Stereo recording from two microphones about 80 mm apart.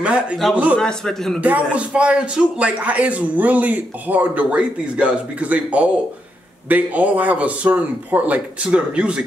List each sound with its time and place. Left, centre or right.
0.0 s speech: centre
0.7 s a man's voice: centre
1.4 s speech: centre